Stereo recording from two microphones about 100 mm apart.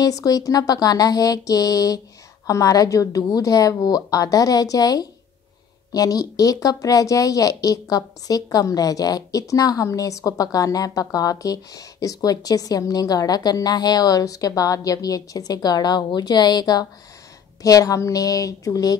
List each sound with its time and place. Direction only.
0.0 s speech: 40° left (ahead or behind)